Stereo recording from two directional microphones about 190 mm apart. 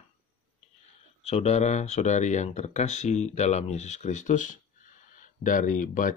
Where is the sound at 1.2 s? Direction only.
35° left (ahead or behind).